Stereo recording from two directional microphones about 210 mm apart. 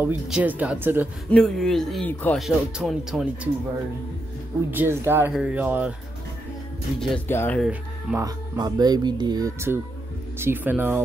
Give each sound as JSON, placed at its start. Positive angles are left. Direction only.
{"t": 0.0, "sound": "speech", "side_deg": -5}
{"t": 1.3, "sound": "speech", "side_deg": 5}
{"t": 4.6, "sound": "speech", "side_deg": -10}
{"t": 7.0, "sound": "speech", "side_deg": 10}
{"t": 8.2, "sound": "speech", "side_deg": -20}